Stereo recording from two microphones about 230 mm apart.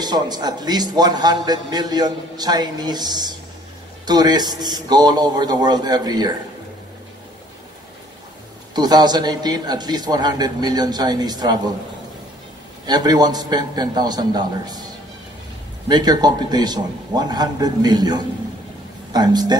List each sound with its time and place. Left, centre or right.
0.0 s a man's voice: centre
8.7 s a man's voice: centre
12.8 s a man's voice: centre
15.9 s a man's voice: centre